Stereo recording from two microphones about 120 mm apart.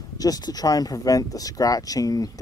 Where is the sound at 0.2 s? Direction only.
30° left (ahead or behind).